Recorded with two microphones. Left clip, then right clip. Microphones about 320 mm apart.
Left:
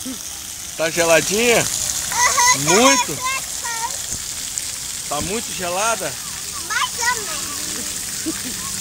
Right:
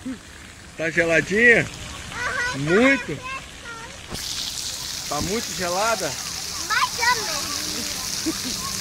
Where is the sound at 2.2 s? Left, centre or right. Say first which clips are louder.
Left 9 dB; left.